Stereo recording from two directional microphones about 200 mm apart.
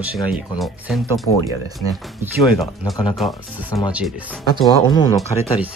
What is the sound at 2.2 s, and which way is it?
Speech, 10° right (ahead or behind).